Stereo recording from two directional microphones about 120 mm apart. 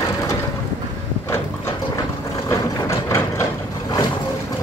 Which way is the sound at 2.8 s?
20° left (ahead or behind).